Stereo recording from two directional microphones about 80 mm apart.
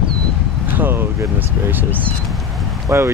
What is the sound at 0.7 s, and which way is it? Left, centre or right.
Speech, right.